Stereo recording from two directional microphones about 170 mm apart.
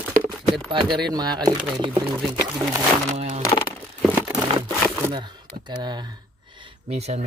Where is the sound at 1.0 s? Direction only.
25° right (ahead or behind).